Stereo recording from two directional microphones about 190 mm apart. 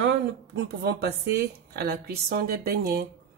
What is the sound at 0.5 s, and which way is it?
Speech, 70° right (ahead or behind).